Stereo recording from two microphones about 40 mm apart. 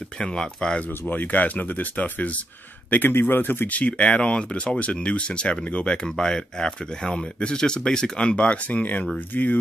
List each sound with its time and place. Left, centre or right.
0.2 s speech: centre
0.7 s speech: left
2.9 s a man's voice: left
3.6 s speech: left
6.0 s speech: centre; by 9.6 s left